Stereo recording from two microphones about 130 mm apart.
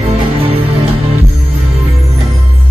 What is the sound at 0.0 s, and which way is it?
Music, 45° right (ahead or behind).